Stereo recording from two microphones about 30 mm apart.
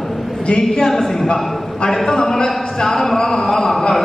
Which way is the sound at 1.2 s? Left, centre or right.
Left.